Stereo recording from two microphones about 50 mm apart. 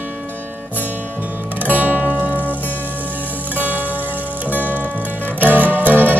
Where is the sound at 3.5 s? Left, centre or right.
Right.